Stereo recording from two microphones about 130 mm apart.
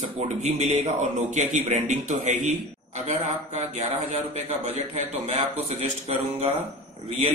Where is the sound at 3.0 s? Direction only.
60° right (ahead or behind).